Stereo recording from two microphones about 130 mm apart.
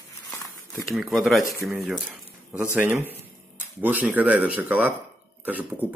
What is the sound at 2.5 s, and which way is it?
Speech, 10° right (ahead or behind).